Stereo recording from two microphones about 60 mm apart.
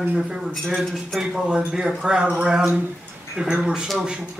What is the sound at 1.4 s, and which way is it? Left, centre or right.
Speech, centre.